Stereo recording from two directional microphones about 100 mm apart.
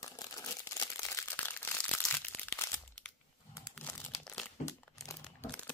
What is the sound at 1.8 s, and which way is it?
Crumpling, 10° left (ahead or behind).